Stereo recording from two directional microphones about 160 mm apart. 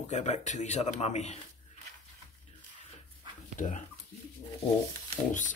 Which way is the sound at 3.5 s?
50° left (ahead or behind).